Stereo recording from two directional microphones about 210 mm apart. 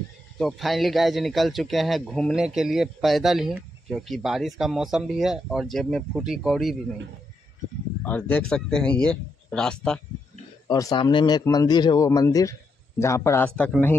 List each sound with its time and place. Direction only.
0.4 s speech: centre (ahead or behind)
8.0 s speech: 10° left (ahead or behind)
10.7 s a man's voice: 20° left (ahead or behind)